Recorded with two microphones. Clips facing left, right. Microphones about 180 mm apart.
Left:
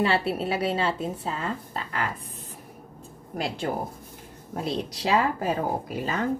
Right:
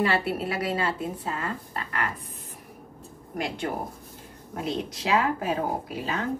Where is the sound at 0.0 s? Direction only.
25° left (ahead or behind).